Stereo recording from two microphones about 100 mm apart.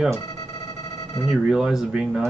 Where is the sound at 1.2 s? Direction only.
5° right (ahead or behind).